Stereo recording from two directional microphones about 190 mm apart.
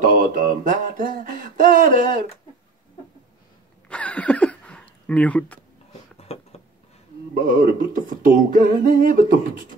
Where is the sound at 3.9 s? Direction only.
5° left (ahead or behind).